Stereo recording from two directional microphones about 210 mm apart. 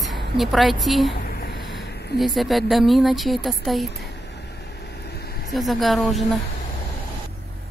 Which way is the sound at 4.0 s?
55° left (ahead or behind).